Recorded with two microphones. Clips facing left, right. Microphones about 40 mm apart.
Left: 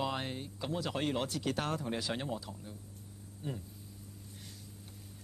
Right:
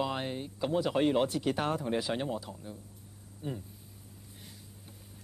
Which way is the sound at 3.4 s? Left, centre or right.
Right.